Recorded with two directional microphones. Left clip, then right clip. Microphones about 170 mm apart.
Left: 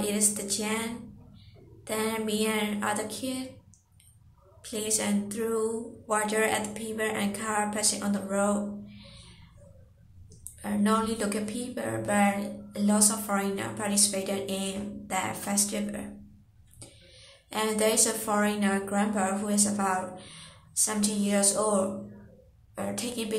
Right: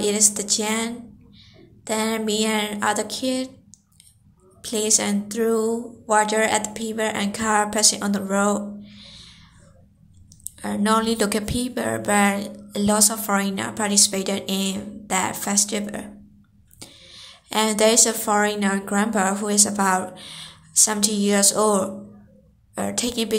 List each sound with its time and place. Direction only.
0.0 s speech: 40° right (ahead or behind)
4.6 s speech: 40° right (ahead or behind)
10.6 s a woman's voice: 40° right (ahead or behind)